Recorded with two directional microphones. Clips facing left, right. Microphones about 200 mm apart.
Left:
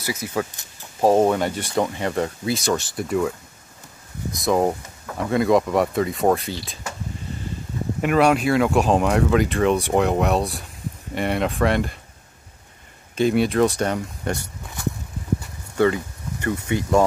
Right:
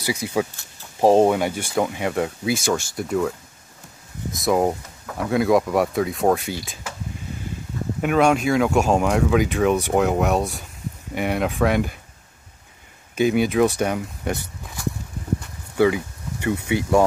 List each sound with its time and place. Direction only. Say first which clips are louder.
0.0 s speech: right 2 dB; 15° right (ahead or behind)
1.3 s speech: even; 5° right (ahead or behind)
8.0 s speech: even; 5° left (ahead or behind)
13.1 s speech: even; 5° right (ahead or behind)
15.7 s a sound: right 1 dB; 10° right (ahead or behind)